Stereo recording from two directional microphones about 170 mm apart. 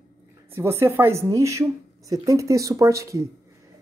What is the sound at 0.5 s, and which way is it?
Speech, 15° right (ahead or behind).